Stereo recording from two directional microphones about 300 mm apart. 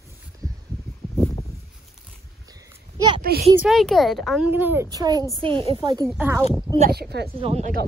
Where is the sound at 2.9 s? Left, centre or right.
Centre.